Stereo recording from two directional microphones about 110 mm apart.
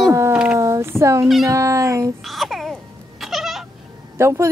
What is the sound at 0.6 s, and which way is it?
Speech, 25° right (ahead or behind).